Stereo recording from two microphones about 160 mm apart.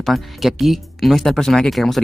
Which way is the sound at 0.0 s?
Centre (ahead or behind).